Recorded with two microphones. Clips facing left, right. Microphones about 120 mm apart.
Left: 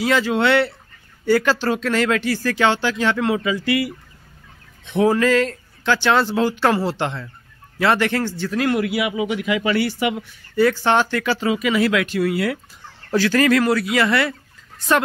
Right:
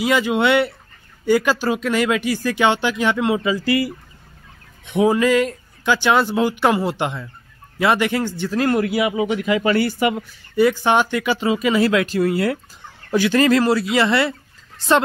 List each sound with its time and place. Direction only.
0.0 s speech: 15° right (ahead or behind)
3.4 s speech: 35° right (ahead or behind)
4.8 s speech: 15° right (ahead or behind)
8.5 s speech: 35° right (ahead or behind)
10.5 s speech: 15° right (ahead or behind)
11.5 s speech: 30° right (ahead or behind)
13.1 s speech: 20° right (ahead or behind)